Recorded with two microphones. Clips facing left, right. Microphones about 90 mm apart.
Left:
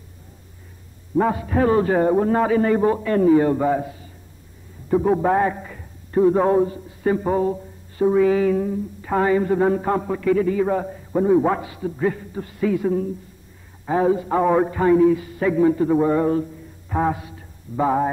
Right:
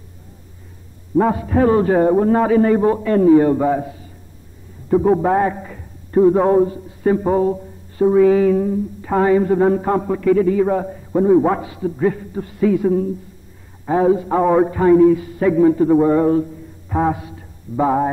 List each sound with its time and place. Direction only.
1.2 s a man's voice: 15° right (ahead or behind)
4.9 s a man's voice: 5° right (ahead or behind)
7.0 s a sound: 10° right (ahead or behind)
9.0 s a man's voice: 15° right (ahead or behind)
11.5 s a man's voice: 15° right (ahead or behind)
14.0 s a man's voice: 10° right (ahead or behind)